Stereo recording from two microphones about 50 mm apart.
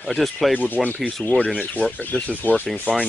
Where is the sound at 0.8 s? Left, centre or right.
Centre.